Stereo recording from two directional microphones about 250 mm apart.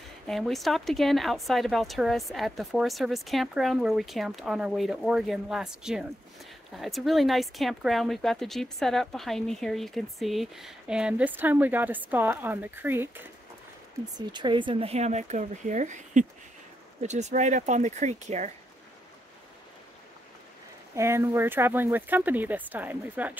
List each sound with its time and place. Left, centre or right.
0.3 s speech: centre; by 18.5 s right
20.9 s speech: centre